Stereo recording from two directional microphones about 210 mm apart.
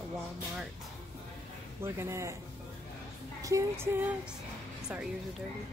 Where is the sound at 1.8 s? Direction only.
10° right (ahead or behind).